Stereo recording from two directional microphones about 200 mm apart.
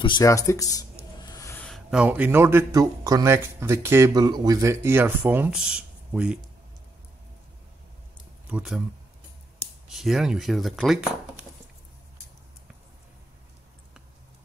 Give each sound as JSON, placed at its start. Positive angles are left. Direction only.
{"t": 0.0, "sound": "a man's voice", "side_deg": 20}
{"t": 8.5, "sound": "speech", "side_deg": -5}
{"t": 9.8, "sound": "speech", "side_deg": 0}